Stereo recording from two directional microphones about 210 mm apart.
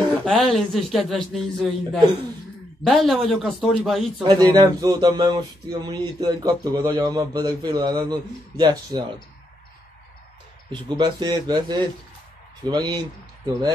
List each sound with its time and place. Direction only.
0.2 s a man's voice: centre (ahead or behind)
4.3 s speech: 20° right (ahead or behind)
10.7 s speech: 20° right (ahead or behind)